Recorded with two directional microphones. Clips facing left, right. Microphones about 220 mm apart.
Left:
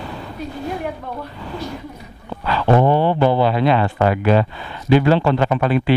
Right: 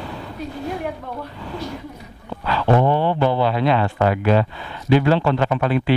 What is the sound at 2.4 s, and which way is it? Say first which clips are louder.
Speech: left 2 dB; 15° left (ahead or behind).